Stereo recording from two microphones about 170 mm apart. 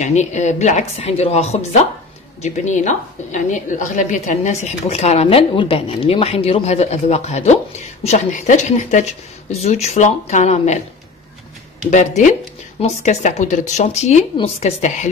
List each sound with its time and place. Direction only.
0.0 s a woman's voice: 45° left (ahead or behind)
11.9 s a woman's voice: 45° left (ahead or behind)